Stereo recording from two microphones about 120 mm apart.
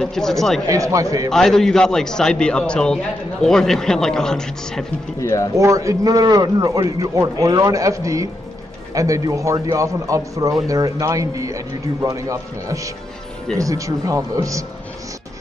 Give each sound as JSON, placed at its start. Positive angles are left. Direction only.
{"t": 0.0, "sound": "a man's voice", "side_deg": 5}
{"t": 0.7, "sound": "a man's voice", "side_deg": -25}
{"t": 1.3, "sound": "a man's voice", "side_deg": 5}
{"t": 5.2, "sound": "speech", "side_deg": 25}
{"t": 5.6, "sound": "a man's voice", "side_deg": -25}